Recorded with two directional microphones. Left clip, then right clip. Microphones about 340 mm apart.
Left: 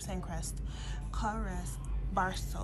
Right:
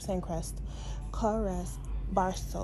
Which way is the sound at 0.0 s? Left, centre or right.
Centre.